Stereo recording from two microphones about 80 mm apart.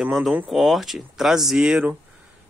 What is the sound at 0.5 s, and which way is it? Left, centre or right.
Speech, centre.